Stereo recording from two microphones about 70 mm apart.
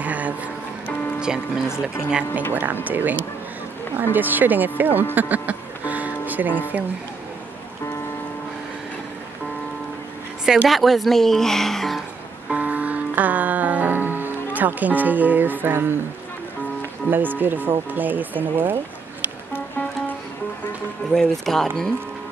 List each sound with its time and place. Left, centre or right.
0.0 s music: right
2.0 s speech: centre
2.5 s speech: right
5.1 s music: right
10.4 s speech: centre
12.5 s music: right
17.1 s speech: right
21.1 s speech: centre